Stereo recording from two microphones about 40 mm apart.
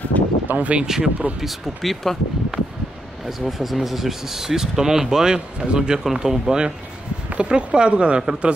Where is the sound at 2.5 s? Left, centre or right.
Right.